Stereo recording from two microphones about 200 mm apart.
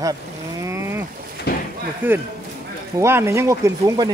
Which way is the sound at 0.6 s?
15° right (ahead or behind).